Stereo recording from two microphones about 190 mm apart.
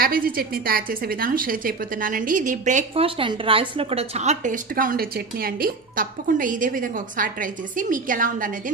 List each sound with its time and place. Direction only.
0.0 s a woman's voice: 50° right (ahead or behind)
3.2 s a woman's voice: 25° right (ahead or behind); by 8.7 s 45° right (ahead or behind)